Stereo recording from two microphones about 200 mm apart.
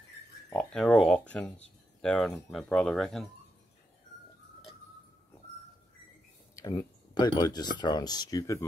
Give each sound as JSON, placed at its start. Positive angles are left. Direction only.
{"t": 0.5, "sound": "speech", "side_deg": 5}
{"t": 6.5, "sound": "speech", "side_deg": 15}